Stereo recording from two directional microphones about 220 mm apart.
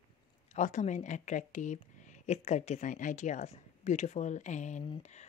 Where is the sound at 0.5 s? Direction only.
35° left (ahead or behind).